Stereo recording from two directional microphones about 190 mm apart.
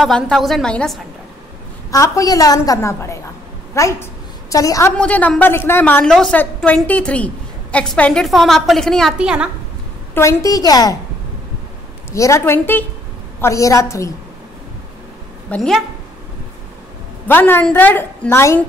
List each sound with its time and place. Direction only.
0.0 s a woman's voice: centre (ahead or behind)
1.9 s a woman's voice: 15° left (ahead or behind)
4.9 s a woman's voice: 5° left (ahead or behind)
10.1 s a woman's voice: 15° left (ahead or behind)
12.1 s a woman's voice: 15° left (ahead or behind)
15.5 s a woman's voice: 5° left (ahead or behind)
17.3 s a woman's voice: 10° left (ahead or behind)